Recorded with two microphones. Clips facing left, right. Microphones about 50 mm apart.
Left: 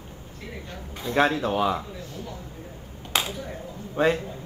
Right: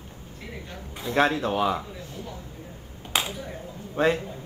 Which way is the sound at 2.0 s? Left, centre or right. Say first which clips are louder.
Left 1 dB; right.